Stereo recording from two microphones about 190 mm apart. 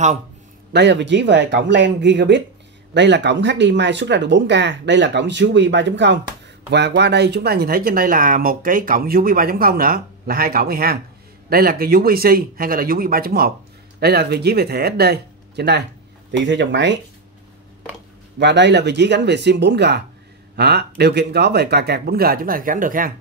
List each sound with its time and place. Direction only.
0.7 s speech: 65° right (ahead or behind)
18.4 s speech: 65° right (ahead or behind); by 23.1 s 45° right (ahead or behind)